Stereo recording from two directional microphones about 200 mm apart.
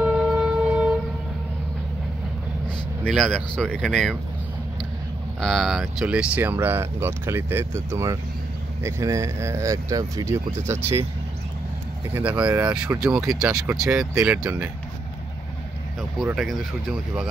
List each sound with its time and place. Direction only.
0.0 s wind instrument: 5° right (ahead or behind)
3.0 s speech: 5° left (ahead or behind)
5.4 s speech: centre (ahead or behind)
10.8 s speech: 30° right (ahead or behind)
12.3 s speech: 5° right (ahead or behind)